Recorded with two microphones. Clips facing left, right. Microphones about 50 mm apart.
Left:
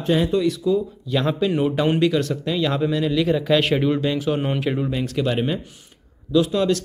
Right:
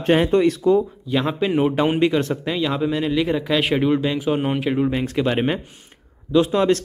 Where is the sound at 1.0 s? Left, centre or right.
Centre.